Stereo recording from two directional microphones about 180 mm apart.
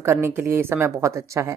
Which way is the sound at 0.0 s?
15° right (ahead or behind).